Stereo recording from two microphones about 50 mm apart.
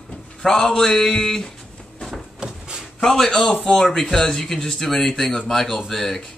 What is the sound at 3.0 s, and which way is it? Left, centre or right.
A man's voice, centre.